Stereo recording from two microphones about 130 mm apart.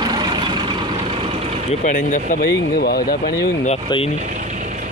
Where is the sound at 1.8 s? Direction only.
80° left.